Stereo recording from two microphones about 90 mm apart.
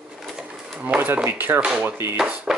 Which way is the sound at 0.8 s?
20° right (ahead or behind).